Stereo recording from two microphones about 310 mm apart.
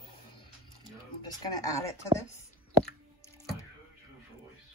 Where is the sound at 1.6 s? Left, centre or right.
Centre.